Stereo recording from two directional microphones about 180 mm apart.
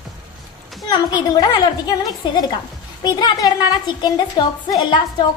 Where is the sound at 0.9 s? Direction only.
20° left (ahead or behind).